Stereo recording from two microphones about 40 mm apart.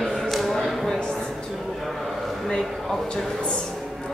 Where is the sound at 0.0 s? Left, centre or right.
Centre.